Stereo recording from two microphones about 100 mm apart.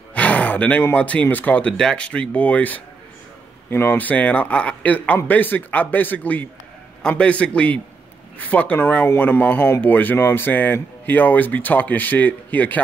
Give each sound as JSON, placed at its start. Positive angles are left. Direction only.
{"t": 0.1, "sound": "speech", "side_deg": 15}